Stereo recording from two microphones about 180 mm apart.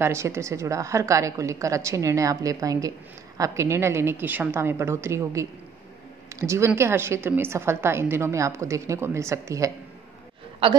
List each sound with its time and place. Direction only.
0.0 s a woman's voice: 15° right (ahead or behind)